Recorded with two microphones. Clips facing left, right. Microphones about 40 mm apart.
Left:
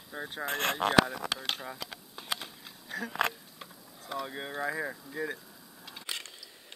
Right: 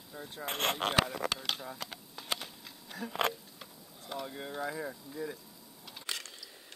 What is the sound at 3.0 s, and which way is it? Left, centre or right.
Speech, left.